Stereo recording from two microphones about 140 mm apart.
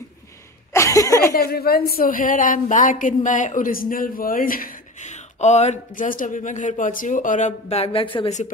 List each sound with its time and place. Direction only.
0.7 s speech: 25° left (ahead or behind)
1.3 s a woman's voice: 90° left; by 8.3 s 40° left (ahead or behind)